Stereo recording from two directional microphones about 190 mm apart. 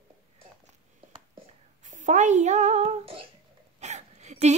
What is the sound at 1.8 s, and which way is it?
Child singing, 40° right (ahead or behind).